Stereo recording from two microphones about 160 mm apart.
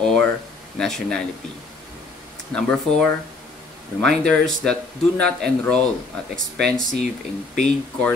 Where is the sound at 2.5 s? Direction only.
5° left (ahead or behind).